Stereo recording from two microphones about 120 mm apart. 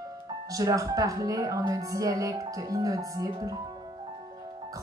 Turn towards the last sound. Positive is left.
turn(degrees=-30)  # may be behind; listen again after turning